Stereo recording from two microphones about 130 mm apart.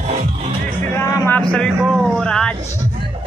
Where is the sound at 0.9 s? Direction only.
20° left (ahead or behind).